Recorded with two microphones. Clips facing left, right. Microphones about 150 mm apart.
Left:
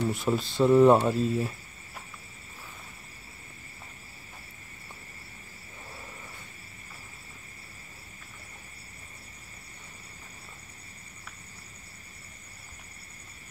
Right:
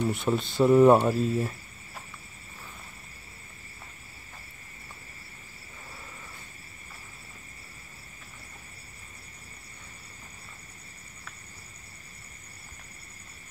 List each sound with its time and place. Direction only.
0.0 s speech: centre (ahead or behind)